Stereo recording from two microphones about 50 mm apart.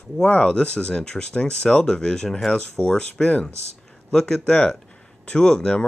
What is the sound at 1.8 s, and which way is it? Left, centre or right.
Speech, centre.